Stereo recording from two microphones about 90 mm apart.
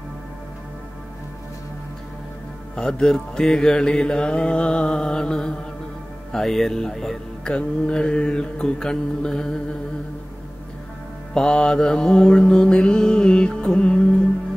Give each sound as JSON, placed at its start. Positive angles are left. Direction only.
{"t": 2.7, "sound": "music", "side_deg": 10}
{"t": 11.3, "sound": "music", "side_deg": 10}